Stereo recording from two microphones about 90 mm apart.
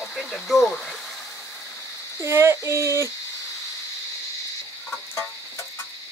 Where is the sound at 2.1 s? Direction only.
30° right (ahead or behind).